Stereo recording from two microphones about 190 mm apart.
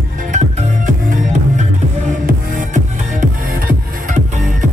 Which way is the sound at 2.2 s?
45° right (ahead or behind).